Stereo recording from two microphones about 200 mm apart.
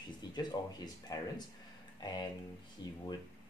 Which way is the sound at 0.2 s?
20° left (ahead or behind).